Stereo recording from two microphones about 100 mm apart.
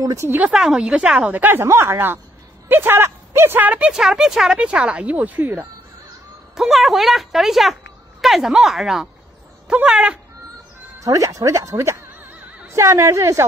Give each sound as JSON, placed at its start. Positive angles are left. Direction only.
{"t": 0.0, "sound": "speech", "side_deg": -30}
{"t": 0.4, "sound": "speech", "side_deg": -10}
{"t": 3.9, "sound": "speech", "side_deg": -5}
{"t": 6.5, "sound": "speech", "side_deg": 0}
{"t": 11.0, "sound": "speech", "side_deg": -30}